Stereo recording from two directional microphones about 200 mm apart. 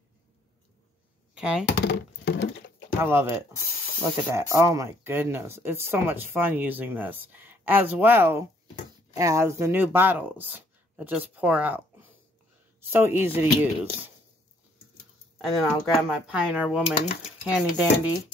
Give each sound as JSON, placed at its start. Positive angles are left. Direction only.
{"t": 1.3, "sound": "speech", "side_deg": -5}
{"t": 1.7, "sound": "speech", "side_deg": 60}
{"t": 3.0, "sound": "speech", "side_deg": -10}
{"t": 15.4, "sound": "speech", "side_deg": 0}